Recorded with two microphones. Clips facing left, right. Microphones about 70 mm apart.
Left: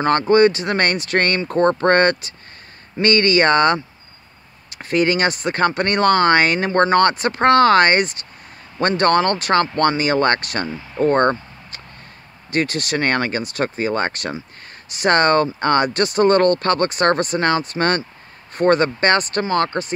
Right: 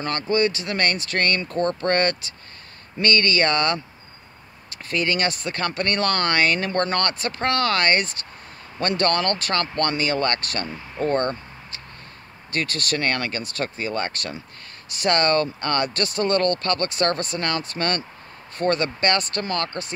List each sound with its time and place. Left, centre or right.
0.0 s speech: left
12.5 s speech: left